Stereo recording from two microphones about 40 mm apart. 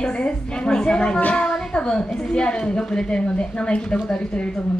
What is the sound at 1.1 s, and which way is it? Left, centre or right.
Speech, left.